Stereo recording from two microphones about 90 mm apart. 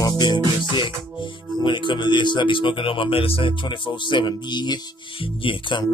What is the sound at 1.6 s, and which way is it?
Speech, 60° left (ahead or behind).